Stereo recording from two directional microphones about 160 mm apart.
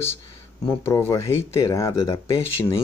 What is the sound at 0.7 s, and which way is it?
Speech, 15° left (ahead or behind).